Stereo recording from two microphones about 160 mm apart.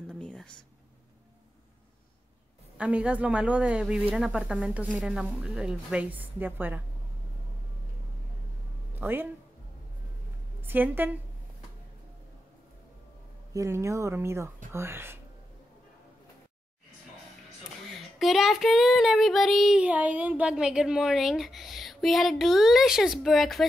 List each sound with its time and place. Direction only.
0.1 s a sound: 5° left (ahead or behind)
2.8 s a woman's voice: 5° right (ahead or behind)
8.9 s speech: 10° right (ahead or behind)
10.6 s a woman's voice: 10° right (ahead or behind)
13.5 s a woman's voice: 20° right (ahead or behind)
17.9 s child singing: centre (ahead or behind)